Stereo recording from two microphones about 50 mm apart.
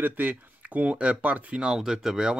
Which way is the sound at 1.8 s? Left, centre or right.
Centre.